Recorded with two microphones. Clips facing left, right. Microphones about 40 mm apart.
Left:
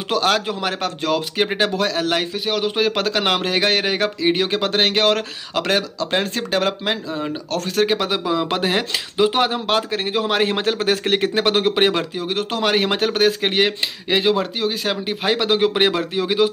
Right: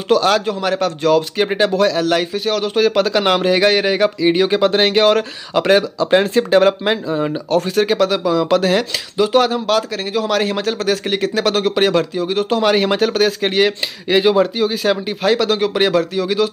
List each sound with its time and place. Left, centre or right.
0.1 s speech: centre
7.8 s a man's voice: centre
14.1 s speech: centre
15.2 s a man's voice: centre